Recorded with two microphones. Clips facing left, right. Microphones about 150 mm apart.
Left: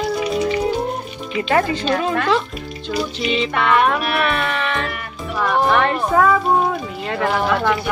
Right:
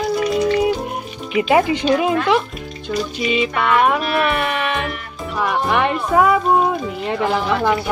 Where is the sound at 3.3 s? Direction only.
10° right (ahead or behind).